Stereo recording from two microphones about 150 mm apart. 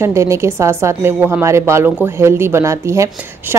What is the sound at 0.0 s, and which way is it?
A woman's voice, 20° right (ahead or behind).